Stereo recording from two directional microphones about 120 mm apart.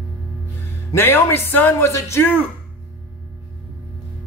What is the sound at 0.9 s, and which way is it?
Speech, 20° left (ahead or behind).